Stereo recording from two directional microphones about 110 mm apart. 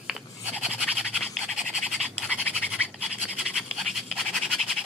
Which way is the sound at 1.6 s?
5° right (ahead or behind).